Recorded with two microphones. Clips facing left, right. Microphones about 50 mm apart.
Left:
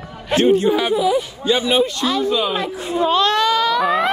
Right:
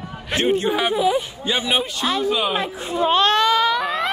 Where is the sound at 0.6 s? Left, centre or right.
Right.